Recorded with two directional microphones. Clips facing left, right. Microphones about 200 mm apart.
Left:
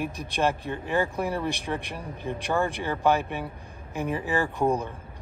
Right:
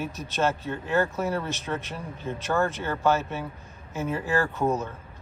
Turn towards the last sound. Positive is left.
turn(degrees=15)  # may be behind; listen again after turning